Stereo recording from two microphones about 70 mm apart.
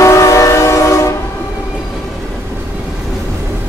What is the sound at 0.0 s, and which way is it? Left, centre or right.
Train, left.